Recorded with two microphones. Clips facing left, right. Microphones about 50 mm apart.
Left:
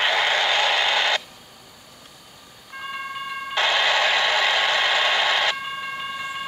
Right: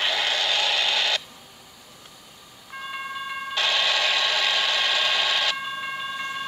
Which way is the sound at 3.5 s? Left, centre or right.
Centre.